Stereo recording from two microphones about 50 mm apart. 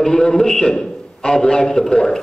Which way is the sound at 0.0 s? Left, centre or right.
Centre.